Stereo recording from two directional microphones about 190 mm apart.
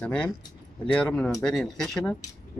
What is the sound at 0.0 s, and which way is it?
Speech, 5° left (ahead or behind).